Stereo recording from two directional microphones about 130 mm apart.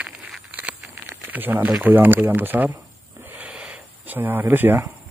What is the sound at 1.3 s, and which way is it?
Speech, 15° right (ahead or behind).